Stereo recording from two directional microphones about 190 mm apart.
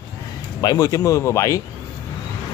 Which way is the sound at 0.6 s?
20° left (ahead or behind).